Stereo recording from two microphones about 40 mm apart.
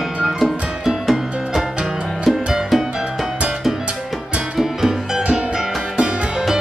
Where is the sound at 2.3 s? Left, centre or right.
Centre.